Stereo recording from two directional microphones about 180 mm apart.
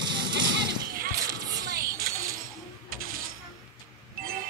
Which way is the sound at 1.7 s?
55° right (ahead or behind).